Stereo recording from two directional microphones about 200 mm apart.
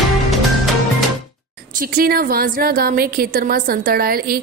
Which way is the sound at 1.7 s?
45° right (ahead or behind).